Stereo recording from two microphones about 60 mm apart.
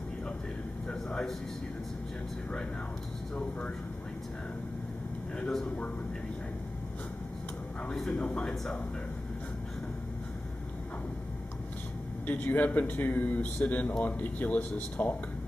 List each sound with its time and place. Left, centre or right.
0.8 s a sound: centre
5.5 s speech: centre
8.1 s speech: left
12.3 s speech: left